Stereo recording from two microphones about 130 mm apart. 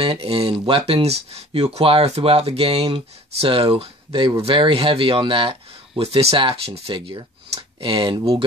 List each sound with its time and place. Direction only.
0.0 s speech: 45° right (ahead or behind)